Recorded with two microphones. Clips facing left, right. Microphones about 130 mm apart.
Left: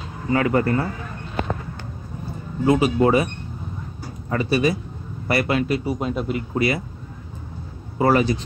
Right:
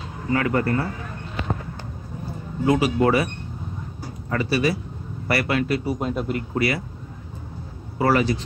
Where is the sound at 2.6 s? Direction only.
25° left (ahead or behind).